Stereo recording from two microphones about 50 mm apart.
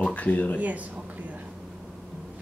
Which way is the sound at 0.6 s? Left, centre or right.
Right.